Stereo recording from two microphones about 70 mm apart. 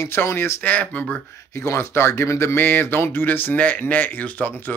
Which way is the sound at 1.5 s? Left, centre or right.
Left.